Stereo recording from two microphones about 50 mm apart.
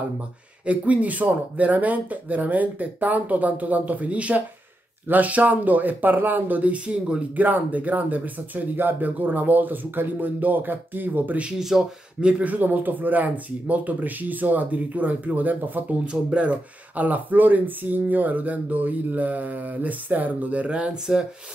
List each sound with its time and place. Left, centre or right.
0.7 s speech: right
11.5 s speech: centre
12.2 s speech: right
12.5 s speech: right
16.1 s speech: right